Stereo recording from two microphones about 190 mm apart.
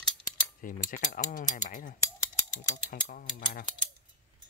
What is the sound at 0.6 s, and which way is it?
Mechanisms, 45° left (ahead or behind).